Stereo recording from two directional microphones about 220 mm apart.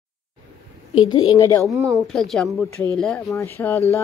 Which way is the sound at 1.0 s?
15° left (ahead or behind).